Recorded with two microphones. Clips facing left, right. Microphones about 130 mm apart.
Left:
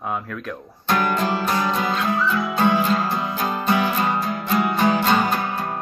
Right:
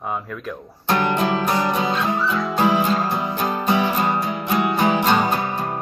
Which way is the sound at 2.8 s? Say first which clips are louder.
Right 1 dB; 10° right (ahead or behind).